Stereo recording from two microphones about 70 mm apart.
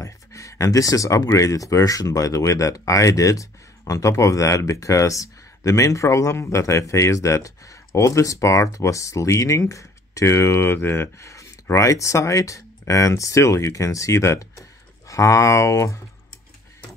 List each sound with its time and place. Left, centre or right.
0.0 s speech: left